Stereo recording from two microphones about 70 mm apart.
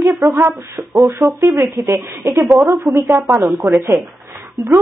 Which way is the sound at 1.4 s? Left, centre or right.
Right.